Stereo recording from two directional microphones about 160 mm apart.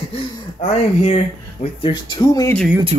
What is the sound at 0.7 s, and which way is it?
Speech, 45° left (ahead or behind).